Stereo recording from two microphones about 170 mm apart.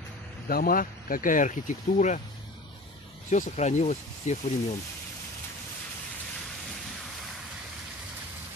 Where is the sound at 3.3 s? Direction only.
45° left (ahead or behind).